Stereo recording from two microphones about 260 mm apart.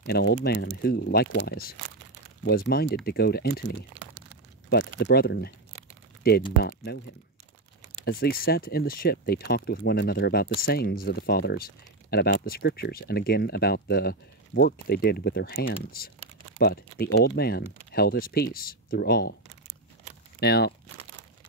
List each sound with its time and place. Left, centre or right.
0.0 s speech: left
8.0 s speech: left
20.3 s speech: left